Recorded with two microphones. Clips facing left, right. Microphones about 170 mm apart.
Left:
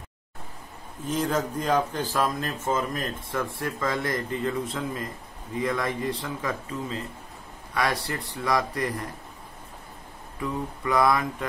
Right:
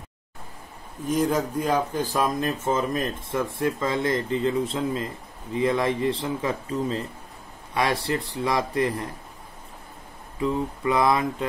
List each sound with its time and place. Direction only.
1.0 s speech: 10° right (ahead or behind); by 9.0 s 25° right (ahead or behind)
10.4 s speech: 25° right (ahead or behind)